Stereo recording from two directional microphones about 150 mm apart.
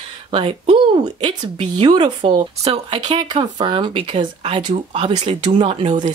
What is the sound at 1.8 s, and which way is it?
Speech, 30° right (ahead or behind).